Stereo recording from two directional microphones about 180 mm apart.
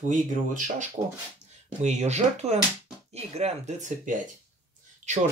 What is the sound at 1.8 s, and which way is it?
Speech, 40° right (ahead or behind).